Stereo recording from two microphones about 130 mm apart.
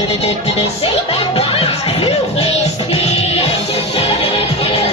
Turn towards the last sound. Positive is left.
turn(degrees=50)  # may be behind; listen again after turning